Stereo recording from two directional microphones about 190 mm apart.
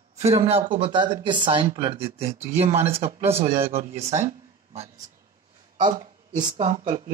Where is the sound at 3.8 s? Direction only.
35° right (ahead or behind).